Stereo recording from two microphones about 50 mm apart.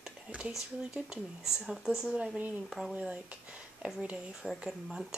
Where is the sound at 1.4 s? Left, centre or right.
Centre.